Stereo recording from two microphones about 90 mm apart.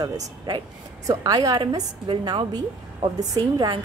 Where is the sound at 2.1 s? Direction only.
70° right (ahead or behind).